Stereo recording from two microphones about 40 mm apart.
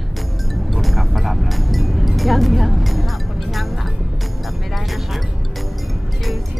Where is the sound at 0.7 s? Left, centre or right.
Centre.